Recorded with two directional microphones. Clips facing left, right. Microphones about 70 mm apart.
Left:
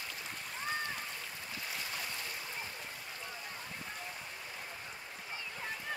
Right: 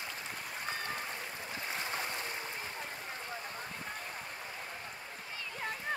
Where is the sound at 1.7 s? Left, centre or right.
Right.